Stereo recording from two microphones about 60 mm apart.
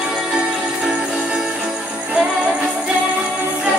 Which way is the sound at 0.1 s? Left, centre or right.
Right.